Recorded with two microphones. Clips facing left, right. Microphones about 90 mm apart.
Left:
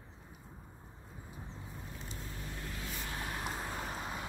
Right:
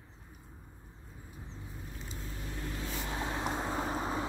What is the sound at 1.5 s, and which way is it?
Vehicle, centre (ahead or behind).